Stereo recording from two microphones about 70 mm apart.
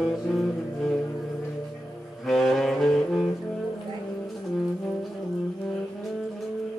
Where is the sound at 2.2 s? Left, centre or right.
Centre.